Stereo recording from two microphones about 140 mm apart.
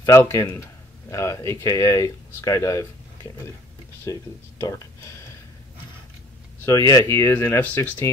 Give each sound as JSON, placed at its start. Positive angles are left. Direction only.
{"t": 0.0, "sound": "speech", "side_deg": 20}
{"t": 4.0, "sound": "speech", "side_deg": 20}
{"t": 6.6, "sound": "speech", "side_deg": 25}